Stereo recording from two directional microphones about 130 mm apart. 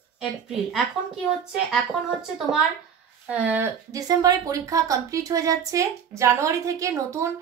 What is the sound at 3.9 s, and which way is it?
A woman's voice, 30° right (ahead or behind).